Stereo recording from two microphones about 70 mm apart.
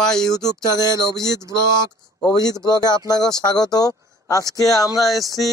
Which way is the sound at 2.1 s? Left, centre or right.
Left.